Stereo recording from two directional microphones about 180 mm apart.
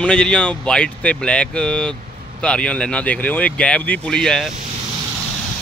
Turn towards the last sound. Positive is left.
turn(degrees=5)  # may be behind; listen again after turning